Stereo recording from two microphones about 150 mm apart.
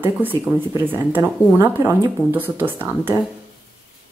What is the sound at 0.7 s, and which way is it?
Speech, 15° right (ahead or behind).